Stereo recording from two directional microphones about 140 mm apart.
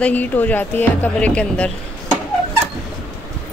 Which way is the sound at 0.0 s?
10° left (ahead or behind).